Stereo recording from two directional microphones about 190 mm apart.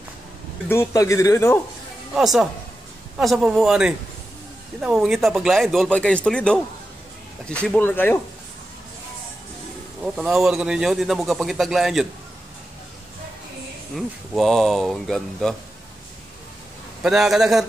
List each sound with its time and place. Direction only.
0.7 s speech: 15° left (ahead or behind)
2.1 s speech: centre (ahead or behind)
7.6 s speech: 10° left (ahead or behind)
10.1 s speech: centre (ahead or behind)
13.9 s speech: centre (ahead or behind)
17.0 s speech: centre (ahead or behind)